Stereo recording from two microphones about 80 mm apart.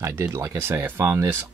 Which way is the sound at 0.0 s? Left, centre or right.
Right.